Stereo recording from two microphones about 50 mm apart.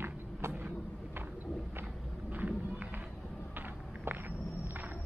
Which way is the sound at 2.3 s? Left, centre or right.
Right.